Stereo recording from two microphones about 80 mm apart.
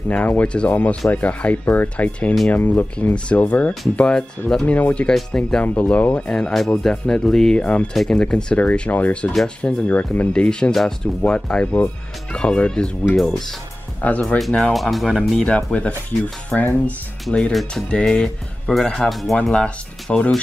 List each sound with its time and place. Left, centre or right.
0.1 s speech: centre
5.6 s speech: centre
7.6 s speech: centre
7.9 s speech: centre
13.1 s speech: centre
14.0 s speech: centre
14.7 s speech: centre
15.4 s speech: centre
17.5 s speech: centre